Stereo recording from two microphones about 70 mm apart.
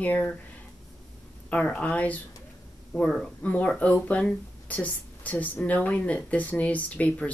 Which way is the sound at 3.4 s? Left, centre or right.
Left.